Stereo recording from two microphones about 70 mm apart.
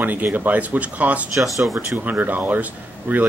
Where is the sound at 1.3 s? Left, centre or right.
Centre.